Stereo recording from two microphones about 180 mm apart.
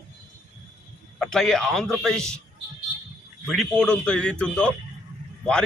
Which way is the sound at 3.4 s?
Centre (ahead or behind).